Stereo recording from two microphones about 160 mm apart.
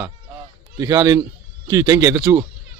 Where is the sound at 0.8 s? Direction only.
20° right (ahead or behind).